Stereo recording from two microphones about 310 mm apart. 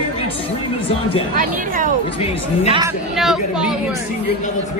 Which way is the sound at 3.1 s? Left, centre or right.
Centre.